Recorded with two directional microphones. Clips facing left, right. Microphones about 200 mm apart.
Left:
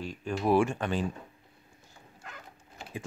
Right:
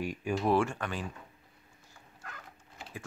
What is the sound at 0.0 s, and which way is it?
Speech, 10° right (ahead or behind).